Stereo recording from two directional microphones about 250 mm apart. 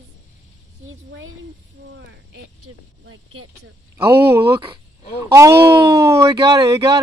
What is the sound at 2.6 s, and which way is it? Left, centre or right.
Vehicle, right.